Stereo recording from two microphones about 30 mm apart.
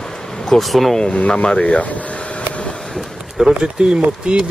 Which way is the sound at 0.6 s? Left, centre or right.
Centre.